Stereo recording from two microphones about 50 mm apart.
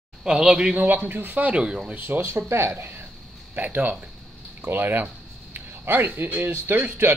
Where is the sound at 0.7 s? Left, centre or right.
Right.